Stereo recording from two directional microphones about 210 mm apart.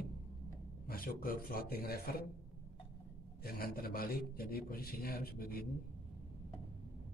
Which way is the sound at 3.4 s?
45° left (ahead or behind).